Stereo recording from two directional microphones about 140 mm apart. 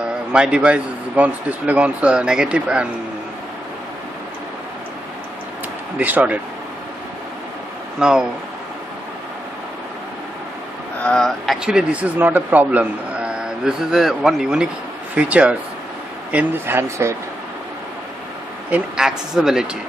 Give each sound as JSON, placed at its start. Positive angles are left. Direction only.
{"t": 0.3, "sound": "a man's voice", "side_deg": -5}
{"t": 5.9, "sound": "a man's voice", "side_deg": -10}
{"t": 8.0, "sound": "speech", "side_deg": -5}
{"t": 11.0, "sound": "a man's voice", "side_deg": 5}
{"t": 18.7, "sound": "speech", "side_deg": -5}